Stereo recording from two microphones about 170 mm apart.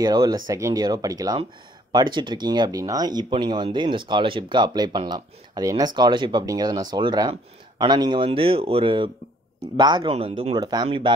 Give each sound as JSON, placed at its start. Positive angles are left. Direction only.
{"t": 0.0, "sound": "speech", "side_deg": -20}